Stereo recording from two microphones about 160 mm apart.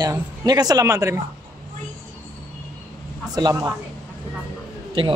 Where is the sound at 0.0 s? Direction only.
25° right (ahead or behind).